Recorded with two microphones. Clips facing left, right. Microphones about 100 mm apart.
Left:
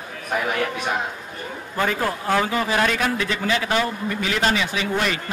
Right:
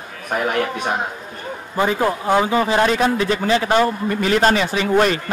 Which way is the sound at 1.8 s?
20° right (ahead or behind).